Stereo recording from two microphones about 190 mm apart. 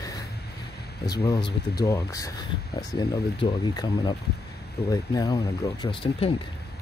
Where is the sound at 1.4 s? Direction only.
55° left (ahead or behind).